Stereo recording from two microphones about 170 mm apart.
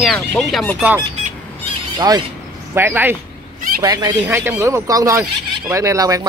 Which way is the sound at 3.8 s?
25° right (ahead or behind).